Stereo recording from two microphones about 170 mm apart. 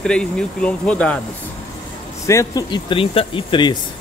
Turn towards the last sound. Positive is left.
turn(degrees=30)  # may be behind; listen again after turning